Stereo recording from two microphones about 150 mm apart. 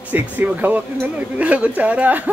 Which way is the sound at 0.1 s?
10° right (ahead or behind).